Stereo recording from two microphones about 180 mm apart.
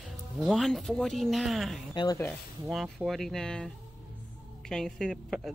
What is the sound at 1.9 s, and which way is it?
Speech, 25° left (ahead or behind).